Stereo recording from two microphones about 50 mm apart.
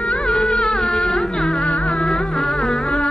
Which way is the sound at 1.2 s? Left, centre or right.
Centre.